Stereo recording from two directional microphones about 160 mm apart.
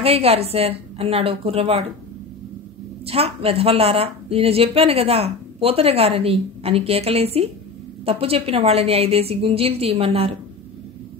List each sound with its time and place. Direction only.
0.0 s a woman's voice: 40° right (ahead or behind)
3.1 s a woman's voice: 40° right (ahead or behind)